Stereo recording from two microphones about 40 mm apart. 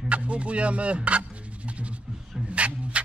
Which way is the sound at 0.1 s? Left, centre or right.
Right.